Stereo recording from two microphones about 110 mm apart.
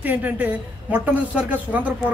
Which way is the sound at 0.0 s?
15° right (ahead or behind).